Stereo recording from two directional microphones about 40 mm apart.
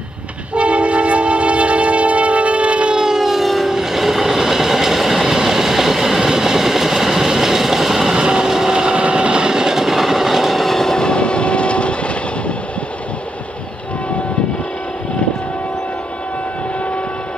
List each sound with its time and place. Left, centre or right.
0.6 s train: right
3.3 s train: centre
8.1 s train: right; by 12.5 s left